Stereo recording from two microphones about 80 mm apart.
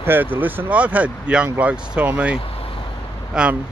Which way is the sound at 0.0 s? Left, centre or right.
Right.